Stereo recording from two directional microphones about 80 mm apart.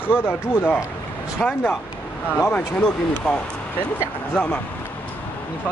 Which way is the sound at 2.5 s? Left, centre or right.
Centre.